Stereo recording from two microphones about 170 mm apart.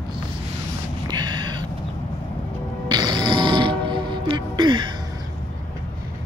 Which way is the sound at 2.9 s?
25° right (ahead or behind).